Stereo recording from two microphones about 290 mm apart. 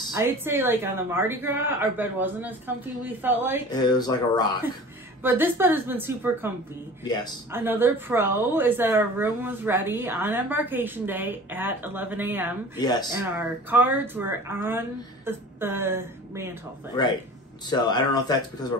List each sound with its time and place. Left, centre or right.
0.1 s speech: centre
3.7 s speech: centre
5.2 s speech: centre
7.5 s speech: centre
17.0 s speech: centre